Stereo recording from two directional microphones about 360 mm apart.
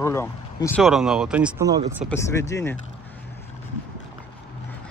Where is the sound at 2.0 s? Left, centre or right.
Centre.